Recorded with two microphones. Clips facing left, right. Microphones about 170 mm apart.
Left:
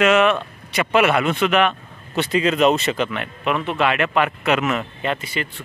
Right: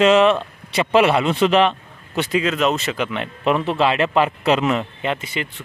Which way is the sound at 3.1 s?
30° right (ahead or behind).